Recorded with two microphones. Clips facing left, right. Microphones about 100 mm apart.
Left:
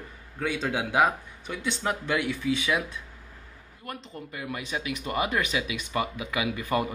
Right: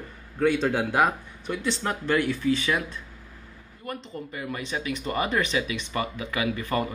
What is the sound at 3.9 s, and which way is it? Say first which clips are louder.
Speech: right 4 dB; centre (ahead or behind).